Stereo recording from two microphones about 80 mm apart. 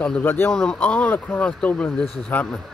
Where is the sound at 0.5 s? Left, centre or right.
Centre.